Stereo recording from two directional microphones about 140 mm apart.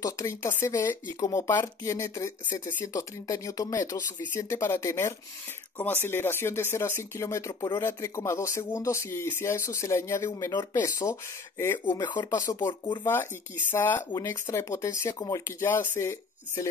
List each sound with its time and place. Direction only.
0.0 s speech: 20° left (ahead or behind)
12.0 s speech: 30° left (ahead or behind)